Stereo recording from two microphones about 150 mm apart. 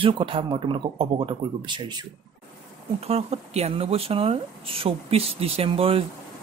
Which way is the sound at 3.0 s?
45° right (ahead or behind).